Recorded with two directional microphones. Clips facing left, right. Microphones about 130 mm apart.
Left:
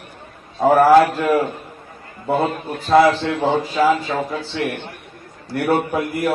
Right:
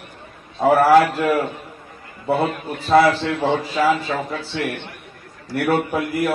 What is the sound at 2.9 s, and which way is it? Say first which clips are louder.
Speech: left 1 dB; 20° left (ahead or behind).